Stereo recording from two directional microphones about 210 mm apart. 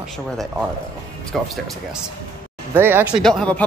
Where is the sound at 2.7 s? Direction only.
10° right (ahead or behind).